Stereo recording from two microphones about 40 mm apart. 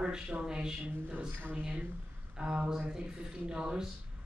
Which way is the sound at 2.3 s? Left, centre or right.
Right.